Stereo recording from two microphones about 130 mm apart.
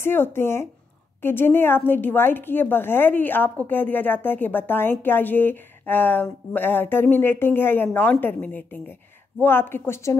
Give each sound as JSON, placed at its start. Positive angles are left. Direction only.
{"t": 0.0, "sound": "a woman's voice", "side_deg": 15}